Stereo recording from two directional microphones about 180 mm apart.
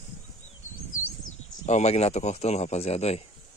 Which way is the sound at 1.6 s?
40° left (ahead or behind).